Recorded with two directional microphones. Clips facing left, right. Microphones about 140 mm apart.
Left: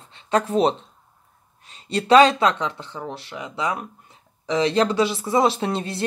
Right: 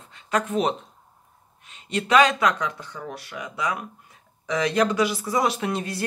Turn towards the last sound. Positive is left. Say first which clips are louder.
# left 2 dB
turn(degrees=25)  # may be behind; listen again after turning